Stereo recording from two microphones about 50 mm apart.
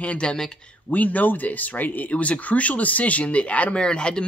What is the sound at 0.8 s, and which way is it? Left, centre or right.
Speech, left.